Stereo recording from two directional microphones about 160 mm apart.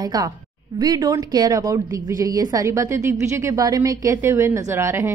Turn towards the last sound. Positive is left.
turn(degrees=-20)  # may be behind; listen again after turning